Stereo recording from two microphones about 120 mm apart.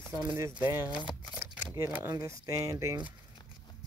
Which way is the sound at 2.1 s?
30° right (ahead or behind).